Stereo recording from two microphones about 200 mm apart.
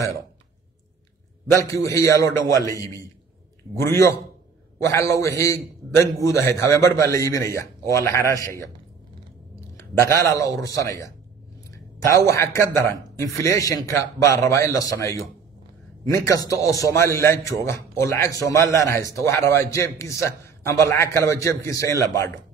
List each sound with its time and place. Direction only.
1.5 s a man's voice: 15° left (ahead or behind)
9.8 s a man's voice: 15° left (ahead or behind)
11.7 s a sound: 15° left (ahead or behind)
12.3 s a man's voice: 15° left (ahead or behind)